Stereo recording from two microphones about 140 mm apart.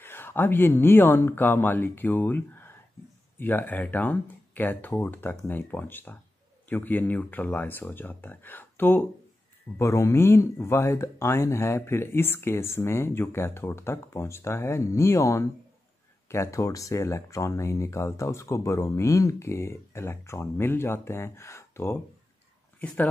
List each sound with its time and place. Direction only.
0.0 s speech: 15° left (ahead or behind)